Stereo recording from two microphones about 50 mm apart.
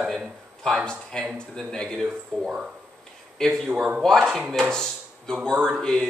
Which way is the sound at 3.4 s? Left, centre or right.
Centre.